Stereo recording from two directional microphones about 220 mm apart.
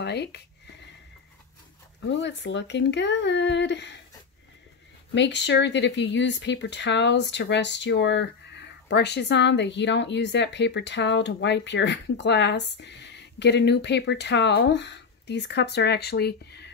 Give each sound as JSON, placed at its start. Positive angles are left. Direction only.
{"t": 0.0, "sound": "a sound", "side_deg": 50}
{"t": 2.0, "sound": "speech", "side_deg": 55}
{"t": 5.1, "sound": "speech", "side_deg": 55}